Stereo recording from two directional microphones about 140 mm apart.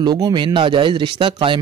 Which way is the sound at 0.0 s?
30° right (ahead or behind).